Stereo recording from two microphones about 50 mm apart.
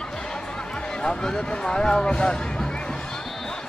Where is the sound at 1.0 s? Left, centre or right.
Centre.